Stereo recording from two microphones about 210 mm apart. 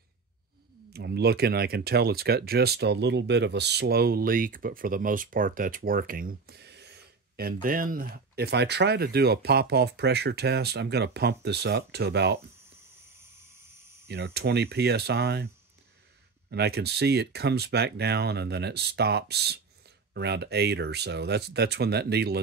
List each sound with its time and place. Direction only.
0.8 s speech: 50° right (ahead or behind)
14.0 s speech: 50° right (ahead or behind)